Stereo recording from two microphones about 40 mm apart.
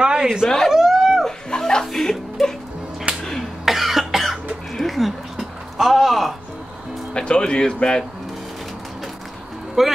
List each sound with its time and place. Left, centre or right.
0.0 s a sound: centre
1.2 s chuckle: centre
2.4 s music: centre
3.6 s cough: centre
4.7 s a sound: centre
7.2 s speech: left
9.8 s speech: centre